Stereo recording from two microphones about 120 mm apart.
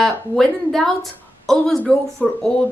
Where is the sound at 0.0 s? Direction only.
Centre (ahead or behind).